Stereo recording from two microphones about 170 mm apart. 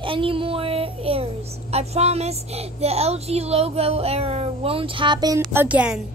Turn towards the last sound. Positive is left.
turn(degrees=-10)  # may be behind; listen again after turning